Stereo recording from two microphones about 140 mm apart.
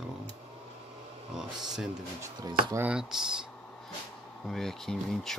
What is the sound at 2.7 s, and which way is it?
Speech, 10° right (ahead or behind).